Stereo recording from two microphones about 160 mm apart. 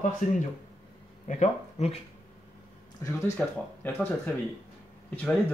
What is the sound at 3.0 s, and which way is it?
Speech, 20° left (ahead or behind).